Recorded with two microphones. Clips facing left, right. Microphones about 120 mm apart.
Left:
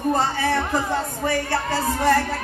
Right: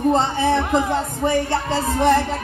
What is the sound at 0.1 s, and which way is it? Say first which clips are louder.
Speech: right 3 dB; 20° right (ahead or behind).